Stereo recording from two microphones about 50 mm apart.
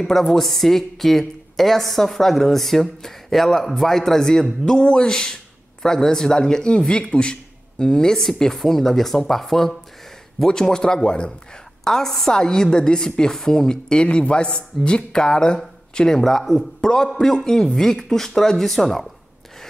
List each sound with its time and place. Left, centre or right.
0.1 s a woman's voice: centre
16.2 s a woman's voice: centre